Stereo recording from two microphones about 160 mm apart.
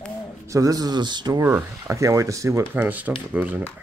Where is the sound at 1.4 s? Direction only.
15° right (ahead or behind).